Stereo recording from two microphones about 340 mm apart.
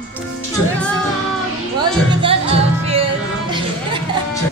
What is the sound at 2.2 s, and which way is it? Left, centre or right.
Music, centre.